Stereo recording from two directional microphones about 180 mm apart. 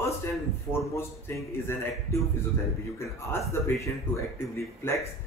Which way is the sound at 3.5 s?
15° left (ahead or behind).